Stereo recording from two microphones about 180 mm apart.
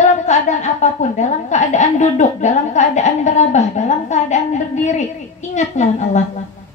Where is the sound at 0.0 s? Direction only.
40° left (ahead or behind).